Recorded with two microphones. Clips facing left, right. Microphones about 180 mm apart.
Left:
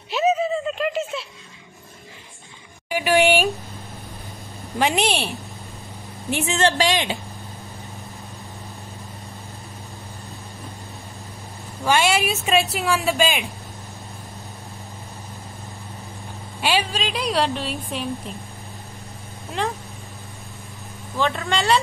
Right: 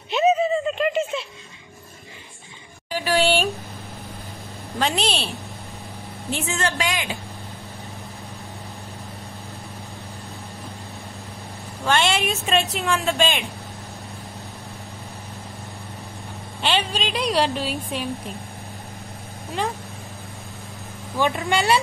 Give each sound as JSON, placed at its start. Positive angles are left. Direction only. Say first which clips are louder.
{"t": 0.1, "sound": "a sound", "louder": "right 2 dB", "side_deg": 0}
{"t": 2.9, "sound": "a sound", "louder": "left 3 dB", "side_deg": 15}
{"t": 4.7, "sound": "a woman's voice", "louder": "left 3 dB", "side_deg": 15}
{"t": 6.6, "sound": "speech", "louder": "left 8 dB", "side_deg": 30}
{"t": 11.8, "sound": "a woman's voice", "louder": "left 2 dB", "side_deg": 5}
{"t": 16.6, "sound": "a woman's voice", "louder": "left 1 dB", "side_deg": 5}
{"t": 19.6, "sound": "a woman's voice", "louder": "left 1 dB", "side_deg": 0}
{"t": 21.2, "sound": "speech", "louder": "right 1 dB", "side_deg": -15}